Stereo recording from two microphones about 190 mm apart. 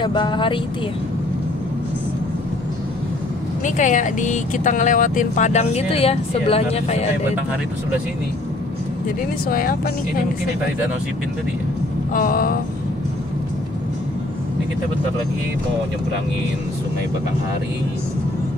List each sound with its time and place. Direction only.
0.0 s speech: 25° left (ahead or behind)
3.6 s speech: 40° left (ahead or behind)
9.5 s speech: 50° left (ahead or behind)
12.1 s speech: 45° left (ahead or behind)